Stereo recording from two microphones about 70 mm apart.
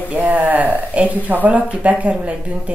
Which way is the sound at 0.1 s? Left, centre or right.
Right.